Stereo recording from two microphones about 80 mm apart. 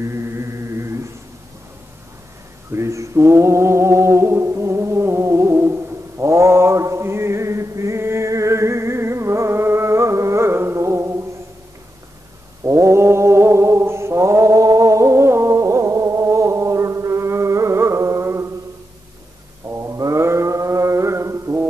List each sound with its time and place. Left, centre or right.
0.0 s chant: right
2.7 s mantra: right
12.6 s mantra: right
19.7 s mantra: right